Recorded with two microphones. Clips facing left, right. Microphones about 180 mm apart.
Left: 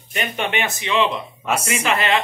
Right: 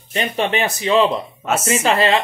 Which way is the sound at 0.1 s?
30° right (ahead or behind).